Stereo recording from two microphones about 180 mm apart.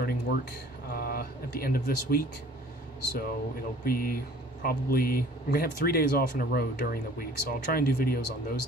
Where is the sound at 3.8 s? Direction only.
55° left (ahead or behind).